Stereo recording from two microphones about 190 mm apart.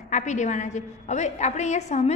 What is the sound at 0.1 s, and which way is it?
A woman's voice, 40° left (ahead or behind).